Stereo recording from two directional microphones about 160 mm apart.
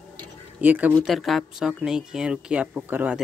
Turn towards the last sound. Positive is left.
turn(degrees=-10)  # may be behind; listen again after turning